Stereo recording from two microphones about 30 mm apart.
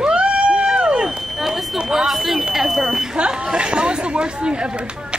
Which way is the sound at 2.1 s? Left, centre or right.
Centre.